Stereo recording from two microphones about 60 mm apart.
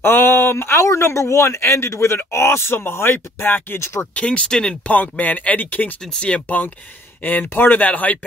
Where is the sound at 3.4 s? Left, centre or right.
Left.